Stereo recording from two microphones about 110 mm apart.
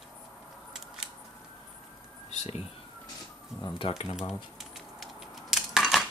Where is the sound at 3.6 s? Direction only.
50° left (ahead or behind).